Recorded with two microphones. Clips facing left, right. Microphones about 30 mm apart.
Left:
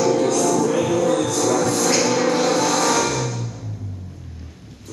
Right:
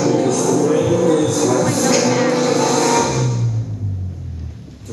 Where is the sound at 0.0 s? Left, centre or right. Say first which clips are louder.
Right 2 dB; centre.